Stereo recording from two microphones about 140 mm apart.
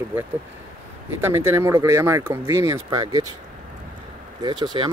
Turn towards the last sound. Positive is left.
turn(degrees=-30)  # may be behind; listen again after turning